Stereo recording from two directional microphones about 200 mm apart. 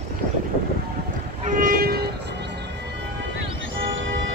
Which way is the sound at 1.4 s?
45° right (ahead or behind).